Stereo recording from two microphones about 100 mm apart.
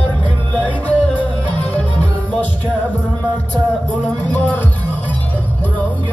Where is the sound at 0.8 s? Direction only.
15° left (ahead or behind).